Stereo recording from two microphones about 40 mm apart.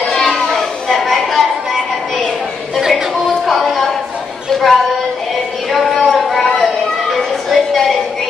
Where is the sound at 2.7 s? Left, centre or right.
Centre.